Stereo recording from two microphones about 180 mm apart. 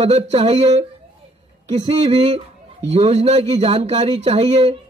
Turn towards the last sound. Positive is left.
turn(degrees=-35)  # may be behind; listen again after turning